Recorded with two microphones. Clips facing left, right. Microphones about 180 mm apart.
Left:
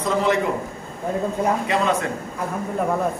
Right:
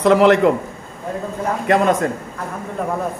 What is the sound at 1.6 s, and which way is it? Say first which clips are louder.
Speech: right 5 dB; 55° right (ahead or behind).